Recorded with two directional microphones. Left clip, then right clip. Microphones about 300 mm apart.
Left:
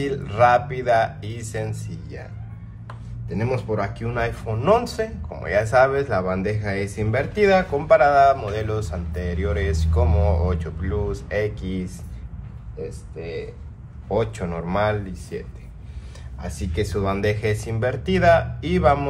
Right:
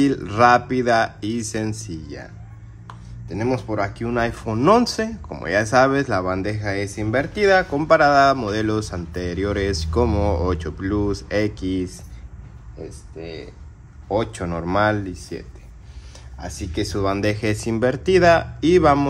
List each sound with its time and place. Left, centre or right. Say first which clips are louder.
0.0 s speech: right 2 dB; right
3.3 s speech: right 1 dB; right
14.0 s speech: right 1 dB; right
16.3 s speech: even; right